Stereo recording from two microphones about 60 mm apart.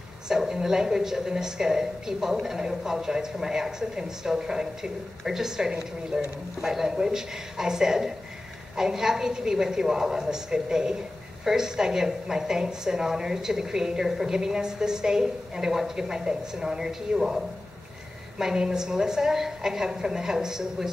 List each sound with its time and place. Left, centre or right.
0.3 s a woman's voice: centre